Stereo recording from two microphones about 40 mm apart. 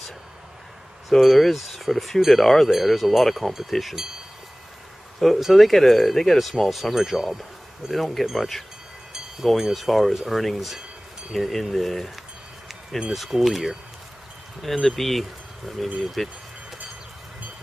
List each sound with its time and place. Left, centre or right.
1.2 s speech: centre
5.2 s speech: centre
13.1 s speech: centre
14.9 s speech: centre